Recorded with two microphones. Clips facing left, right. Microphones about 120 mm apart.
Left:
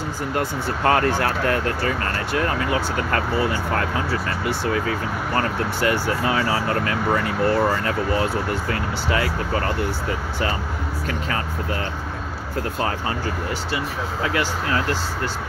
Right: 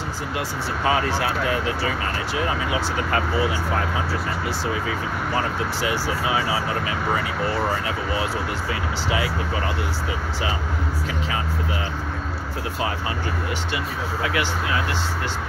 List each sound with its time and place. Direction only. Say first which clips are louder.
0.4 s speech: left 3 dB; 55° left (ahead or behind)
5.3 s speech: left 2 dB; 55° left (ahead or behind)
11.1 s speech: left 3 dB; 55° left (ahead or behind)